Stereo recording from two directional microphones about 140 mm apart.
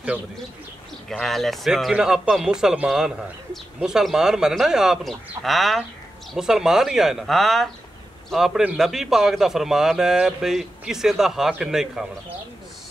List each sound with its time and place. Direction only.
1.0 s a man's voice: centre (ahead or behind)